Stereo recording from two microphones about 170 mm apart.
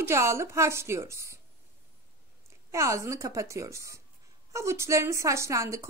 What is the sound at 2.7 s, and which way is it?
A woman's voice, 15° right (ahead or behind).